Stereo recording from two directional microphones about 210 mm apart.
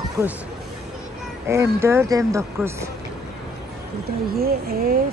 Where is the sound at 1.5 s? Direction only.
15° right (ahead or behind).